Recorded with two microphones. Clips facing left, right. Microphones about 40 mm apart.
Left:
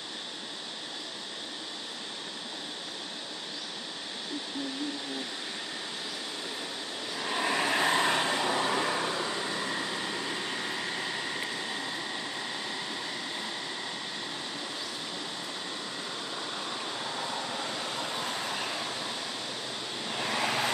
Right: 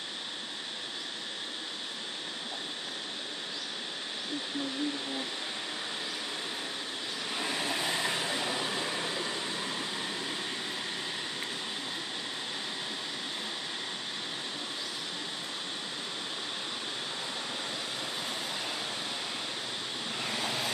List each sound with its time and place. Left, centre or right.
7.4 s vehicle: left
8.8 s vehicle: left
20.3 s vehicle: left